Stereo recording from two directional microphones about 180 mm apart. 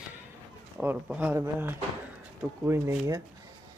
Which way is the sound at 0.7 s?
5° right (ahead or behind).